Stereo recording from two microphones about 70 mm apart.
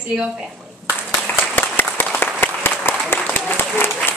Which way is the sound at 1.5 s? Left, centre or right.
Left.